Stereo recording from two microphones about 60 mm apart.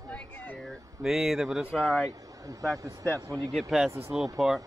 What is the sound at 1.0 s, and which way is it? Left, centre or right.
Speech, centre.